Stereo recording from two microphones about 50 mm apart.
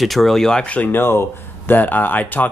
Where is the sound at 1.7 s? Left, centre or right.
Left.